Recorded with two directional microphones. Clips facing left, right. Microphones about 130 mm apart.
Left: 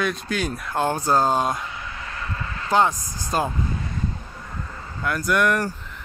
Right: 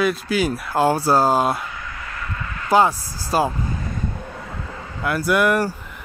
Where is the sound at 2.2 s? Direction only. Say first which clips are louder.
Right 1 dB; 30° left (ahead or behind).